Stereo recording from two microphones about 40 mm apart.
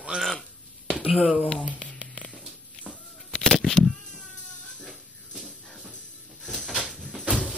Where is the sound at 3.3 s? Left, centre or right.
Centre.